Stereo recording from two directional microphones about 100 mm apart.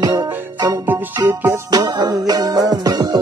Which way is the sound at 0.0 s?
35° right (ahead or behind).